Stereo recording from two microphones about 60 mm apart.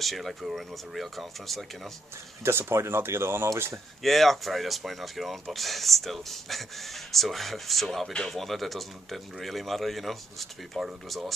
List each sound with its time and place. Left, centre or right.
0.0 s speech: centre
2.4 s speech: right
4.0 s speech: centre